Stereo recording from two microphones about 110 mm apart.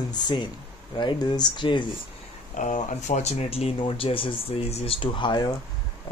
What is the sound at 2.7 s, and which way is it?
Speech, 90° left.